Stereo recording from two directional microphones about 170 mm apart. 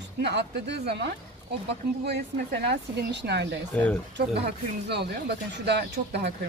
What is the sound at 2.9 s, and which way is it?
Speech, 80° right.